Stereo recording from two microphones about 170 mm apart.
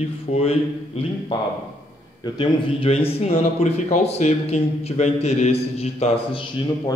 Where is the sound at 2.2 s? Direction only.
25° left (ahead or behind).